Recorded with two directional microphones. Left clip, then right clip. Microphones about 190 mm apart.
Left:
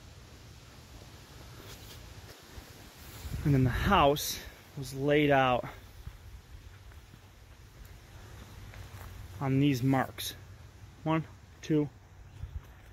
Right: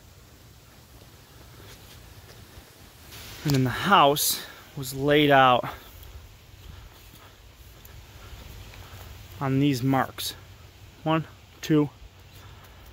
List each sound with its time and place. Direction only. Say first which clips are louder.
3.5 s speech: right 7 dB; centre (ahead or behind)
9.4 s speech: right 4 dB; 5° right (ahead or behind)
11.6 s speech: right 7 dB; 30° right (ahead or behind)